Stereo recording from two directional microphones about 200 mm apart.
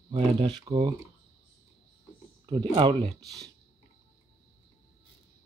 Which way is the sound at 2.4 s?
25° right (ahead or behind).